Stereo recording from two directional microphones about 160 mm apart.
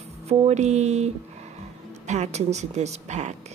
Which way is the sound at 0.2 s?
40° right (ahead or behind).